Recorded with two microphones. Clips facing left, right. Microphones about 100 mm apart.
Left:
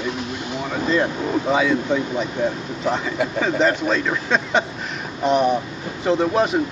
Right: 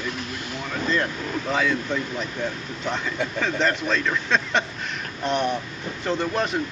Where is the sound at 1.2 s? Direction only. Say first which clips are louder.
Left 7 dB; 25° left (ahead or behind).